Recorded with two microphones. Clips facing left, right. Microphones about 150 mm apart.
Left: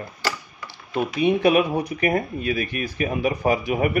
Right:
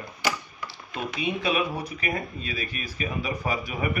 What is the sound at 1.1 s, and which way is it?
Speech, 55° left (ahead or behind).